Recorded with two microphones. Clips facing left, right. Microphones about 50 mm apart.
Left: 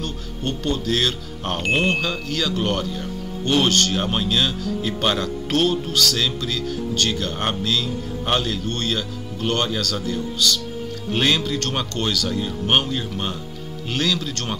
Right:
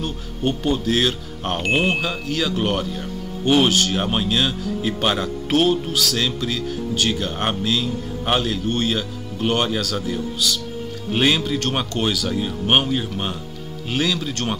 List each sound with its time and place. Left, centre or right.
0.0 s speech: centre